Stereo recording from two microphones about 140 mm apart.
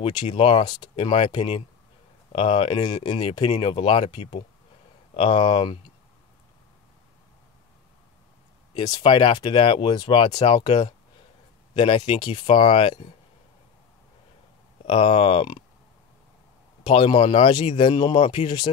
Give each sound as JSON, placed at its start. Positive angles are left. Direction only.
{"t": 0.0, "sound": "speech", "side_deg": 35}
{"t": 8.7, "sound": "speech", "side_deg": 30}
{"t": 14.9, "sound": "speech", "side_deg": 40}
{"t": 16.8, "sound": "speech", "side_deg": 35}